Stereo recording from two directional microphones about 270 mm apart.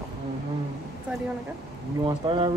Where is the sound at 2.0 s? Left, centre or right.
Centre.